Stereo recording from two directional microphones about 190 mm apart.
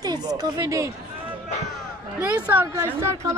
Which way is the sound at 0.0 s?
20° right (ahead or behind).